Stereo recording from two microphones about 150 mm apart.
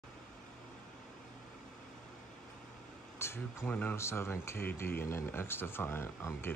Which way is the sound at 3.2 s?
15° left (ahead or behind).